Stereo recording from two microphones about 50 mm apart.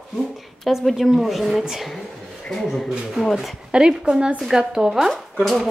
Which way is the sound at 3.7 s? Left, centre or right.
Centre.